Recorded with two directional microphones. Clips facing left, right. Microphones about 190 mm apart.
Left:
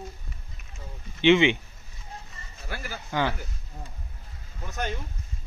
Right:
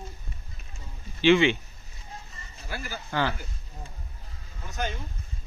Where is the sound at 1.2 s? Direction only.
20° left (ahead or behind).